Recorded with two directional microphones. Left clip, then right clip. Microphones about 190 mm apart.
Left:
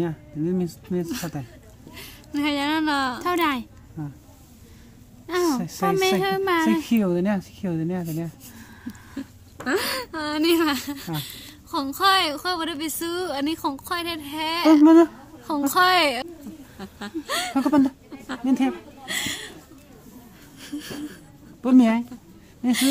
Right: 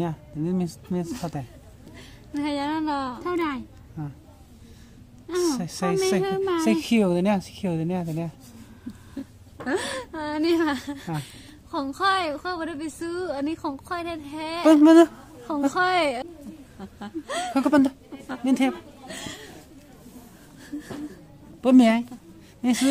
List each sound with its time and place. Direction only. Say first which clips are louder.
0.0 s a woman's voice: left 2 dB; centre (ahead or behind)
3.3 s speech: left 4 dB; 65° left (ahead or behind)
5.6 s speech: left 3 dB; centre (ahead or behind)
6.2 s a woman's voice: left 3 dB; 60° left (ahead or behind)
6.6 s speech: even; 5° right (ahead or behind)
9.2 s a sound: left 2 dB; centre (ahead or behind)
9.7 s a woman's voice: left 3 dB; 5° right (ahead or behind)
19.0 s chuckle: left 10 dB; 5° left (ahead or behind)
21.6 s speech: right 1 dB; 5° right (ahead or behind)